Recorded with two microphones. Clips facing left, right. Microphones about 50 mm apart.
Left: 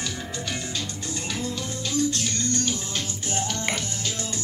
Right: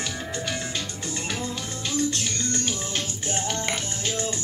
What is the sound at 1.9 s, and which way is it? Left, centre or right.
Music, right.